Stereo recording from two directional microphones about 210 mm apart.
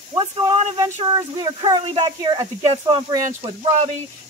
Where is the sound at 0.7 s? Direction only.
15° right (ahead or behind).